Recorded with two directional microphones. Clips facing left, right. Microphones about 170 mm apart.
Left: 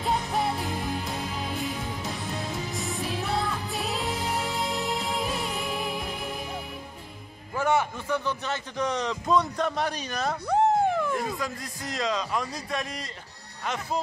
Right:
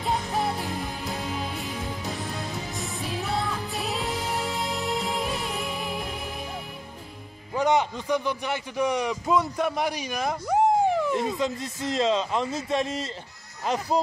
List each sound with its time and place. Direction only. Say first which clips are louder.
0.0 s music: even; centre (ahead or behind)
2.7 s music: left 1 dB; centre (ahead or behind)
7.5 s a man's voice: right 2 dB; 15° right (ahead or behind)